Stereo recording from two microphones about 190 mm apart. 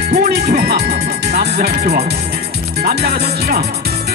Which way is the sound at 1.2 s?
55° right (ahead or behind).